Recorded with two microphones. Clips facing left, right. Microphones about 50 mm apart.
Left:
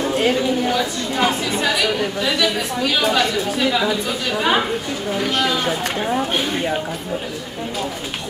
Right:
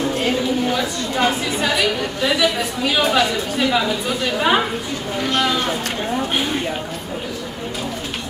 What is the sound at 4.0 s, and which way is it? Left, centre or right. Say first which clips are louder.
A woman's voice: right 1 dB; centre.